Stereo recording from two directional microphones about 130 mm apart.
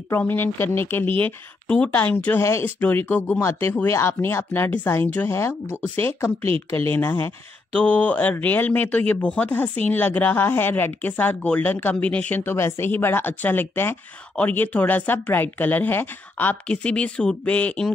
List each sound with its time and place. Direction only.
0.1 s speech: 15° left (ahead or behind)